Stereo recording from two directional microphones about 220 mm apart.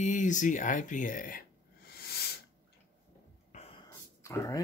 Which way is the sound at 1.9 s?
45° left (ahead or behind).